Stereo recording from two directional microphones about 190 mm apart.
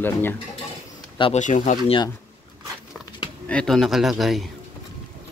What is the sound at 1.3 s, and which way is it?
Speech, 40° left (ahead or behind).